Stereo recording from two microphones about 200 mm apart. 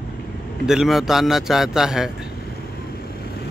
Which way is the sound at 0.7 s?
Centre (ahead or behind).